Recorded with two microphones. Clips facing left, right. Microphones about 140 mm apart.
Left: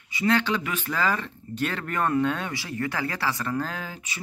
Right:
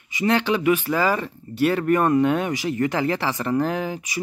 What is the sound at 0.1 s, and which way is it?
Speech, 15° right (ahead or behind).